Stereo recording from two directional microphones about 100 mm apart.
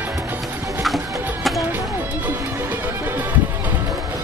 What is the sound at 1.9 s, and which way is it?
Music, 25° right (ahead or behind).